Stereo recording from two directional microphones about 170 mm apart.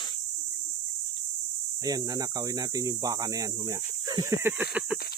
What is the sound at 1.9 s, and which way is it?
Speech, 20° right (ahead or behind).